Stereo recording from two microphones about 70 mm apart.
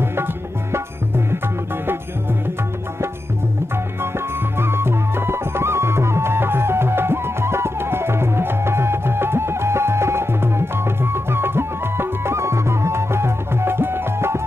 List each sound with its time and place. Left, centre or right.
0.0 s tabla: right
4.6 s music: right